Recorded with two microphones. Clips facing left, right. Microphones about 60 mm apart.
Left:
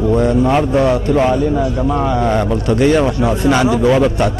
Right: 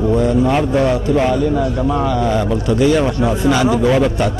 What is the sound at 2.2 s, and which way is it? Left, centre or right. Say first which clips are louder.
Speech: left 1 dB; left.